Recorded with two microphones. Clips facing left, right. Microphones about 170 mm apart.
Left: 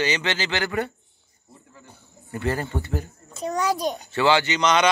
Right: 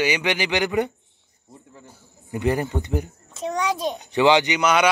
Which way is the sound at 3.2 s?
Centre (ahead or behind).